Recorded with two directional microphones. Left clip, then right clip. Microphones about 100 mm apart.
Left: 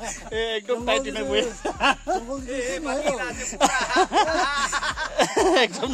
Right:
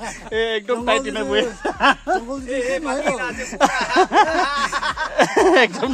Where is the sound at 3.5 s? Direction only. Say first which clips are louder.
Right 3 dB; 50° right (ahead or behind).